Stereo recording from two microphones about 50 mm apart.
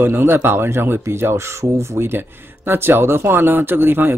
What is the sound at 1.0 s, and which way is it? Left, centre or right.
Speech, right.